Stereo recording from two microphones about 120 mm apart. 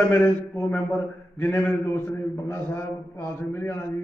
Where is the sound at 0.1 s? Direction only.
15° left (ahead or behind).